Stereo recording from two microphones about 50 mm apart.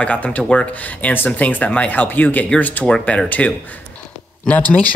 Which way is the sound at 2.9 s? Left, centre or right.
Centre.